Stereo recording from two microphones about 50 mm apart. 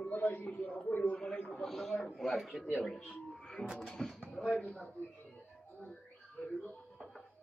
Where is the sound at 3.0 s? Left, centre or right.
Centre.